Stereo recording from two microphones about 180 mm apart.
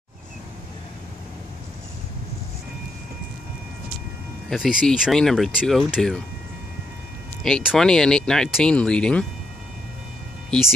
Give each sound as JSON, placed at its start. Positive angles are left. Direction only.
{"t": 4.5, "sound": "speech", "side_deg": -5}
{"t": 7.4, "sound": "speech", "side_deg": 0}